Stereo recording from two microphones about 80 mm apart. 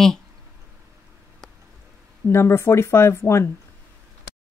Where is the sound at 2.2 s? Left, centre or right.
Left.